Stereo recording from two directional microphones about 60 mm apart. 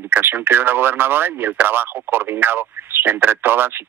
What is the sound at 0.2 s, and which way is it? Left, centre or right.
Speech, right.